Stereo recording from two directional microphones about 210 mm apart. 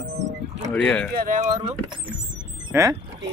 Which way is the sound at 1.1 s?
40° right (ahead or behind).